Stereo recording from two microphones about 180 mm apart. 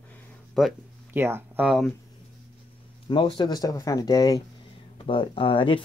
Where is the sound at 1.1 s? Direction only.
10° right (ahead or behind).